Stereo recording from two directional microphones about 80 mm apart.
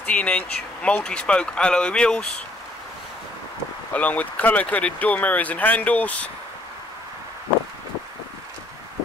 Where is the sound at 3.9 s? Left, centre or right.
Centre.